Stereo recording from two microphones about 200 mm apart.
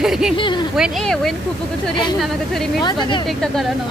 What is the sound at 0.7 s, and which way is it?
Speech, centre (ahead or behind).